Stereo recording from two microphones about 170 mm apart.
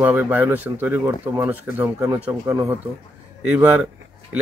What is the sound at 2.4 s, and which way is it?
Speech, 20° right (ahead or behind).